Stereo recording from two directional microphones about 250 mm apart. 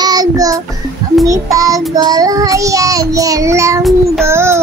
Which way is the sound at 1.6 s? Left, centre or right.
Centre.